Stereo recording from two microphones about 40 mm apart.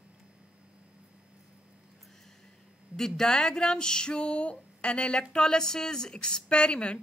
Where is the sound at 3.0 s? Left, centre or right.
Centre.